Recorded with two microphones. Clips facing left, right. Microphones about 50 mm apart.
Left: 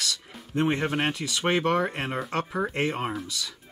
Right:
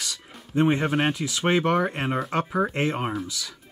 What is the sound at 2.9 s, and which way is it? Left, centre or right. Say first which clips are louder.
Speech: right 2 dB; centre.